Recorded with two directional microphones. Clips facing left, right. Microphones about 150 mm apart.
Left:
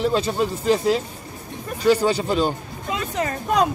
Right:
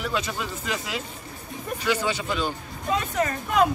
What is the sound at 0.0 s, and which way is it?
Speech, 35° left (ahead or behind).